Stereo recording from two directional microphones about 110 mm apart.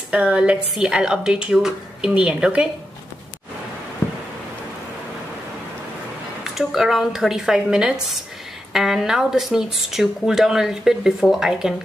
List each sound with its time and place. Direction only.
0.1 s a woman's voice: 10° right (ahead or behind)
4.0 s a sound: 20° left (ahead or behind)
6.4 s speech: centre (ahead or behind)